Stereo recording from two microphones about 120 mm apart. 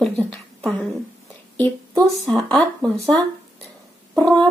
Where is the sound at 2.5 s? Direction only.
5° left (ahead or behind).